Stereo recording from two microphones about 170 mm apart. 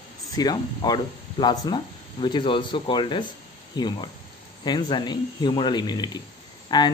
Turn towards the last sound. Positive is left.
turn(degrees=25)  # may be behind; listen again after turning